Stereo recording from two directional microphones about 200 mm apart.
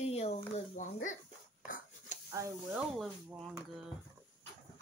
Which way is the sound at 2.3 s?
15° right (ahead or behind).